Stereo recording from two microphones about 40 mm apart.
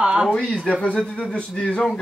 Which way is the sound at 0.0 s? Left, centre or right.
Right.